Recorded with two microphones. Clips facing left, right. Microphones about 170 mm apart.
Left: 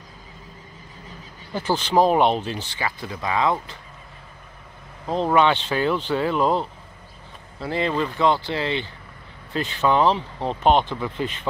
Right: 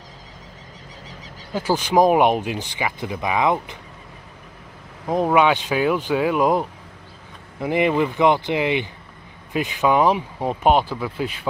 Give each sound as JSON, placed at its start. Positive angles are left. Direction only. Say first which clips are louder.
{"t": 1.0, "sound": "bird flight", "louder": "even", "side_deg": -90}
{"t": 1.5, "sound": "speech", "louder": "right 2 dB", "side_deg": -10}
{"t": 5.0, "sound": "speech", "louder": "right 2 dB", "side_deg": -10}